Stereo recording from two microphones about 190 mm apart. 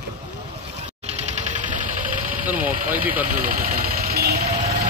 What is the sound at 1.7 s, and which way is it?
Engine knocking, 45° right (ahead or behind).